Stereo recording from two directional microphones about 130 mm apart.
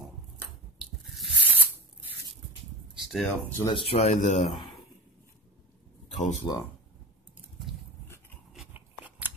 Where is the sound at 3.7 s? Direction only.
45° left (ahead or behind).